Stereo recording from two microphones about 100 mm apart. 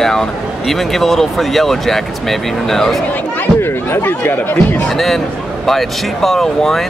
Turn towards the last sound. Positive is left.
turn(degrees=5)  # may be behind; listen again after turning